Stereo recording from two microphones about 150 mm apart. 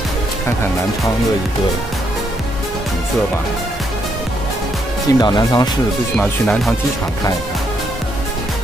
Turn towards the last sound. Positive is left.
turn(degrees=5)  # may be behind; listen again after turning